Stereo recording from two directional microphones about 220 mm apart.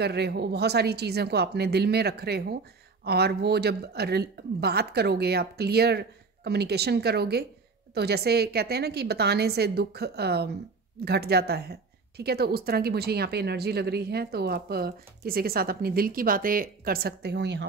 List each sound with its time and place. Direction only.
0.0 s a woman's voice: 50° right (ahead or behind)